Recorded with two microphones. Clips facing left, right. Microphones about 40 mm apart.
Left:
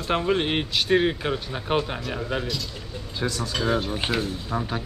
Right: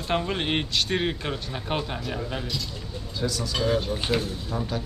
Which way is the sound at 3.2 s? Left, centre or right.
Left.